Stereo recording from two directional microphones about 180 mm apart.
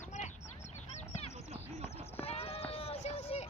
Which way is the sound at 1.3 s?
35° right (ahead or behind).